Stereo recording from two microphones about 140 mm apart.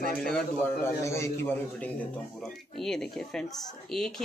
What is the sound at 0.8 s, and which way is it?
A man's voice, 20° left (ahead or behind).